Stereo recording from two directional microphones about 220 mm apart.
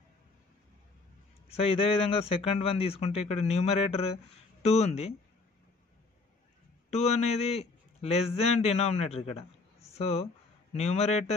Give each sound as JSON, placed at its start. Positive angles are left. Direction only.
{"t": 1.5, "sound": "speech", "side_deg": 25}
{"t": 6.9, "sound": "a man's voice", "side_deg": 30}